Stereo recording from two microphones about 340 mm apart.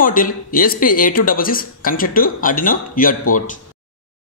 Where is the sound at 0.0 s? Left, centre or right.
Left.